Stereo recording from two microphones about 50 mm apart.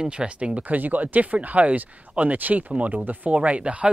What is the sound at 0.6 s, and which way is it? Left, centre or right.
Speech, right.